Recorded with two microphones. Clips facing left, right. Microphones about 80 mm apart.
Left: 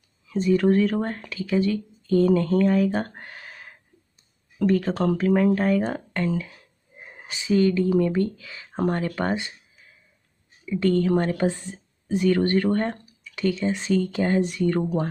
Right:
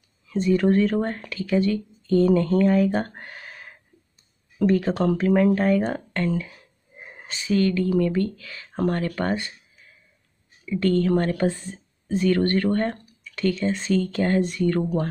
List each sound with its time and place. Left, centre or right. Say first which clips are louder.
0.3 s speech: even; centre
7.2 s speech: left 1 dB; centre
10.6 s speech: even; centre